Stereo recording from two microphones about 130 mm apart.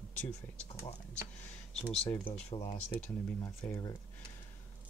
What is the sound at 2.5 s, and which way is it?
Speech, 55° left (ahead or behind).